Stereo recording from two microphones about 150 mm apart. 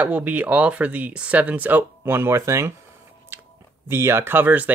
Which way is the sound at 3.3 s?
15° right (ahead or behind).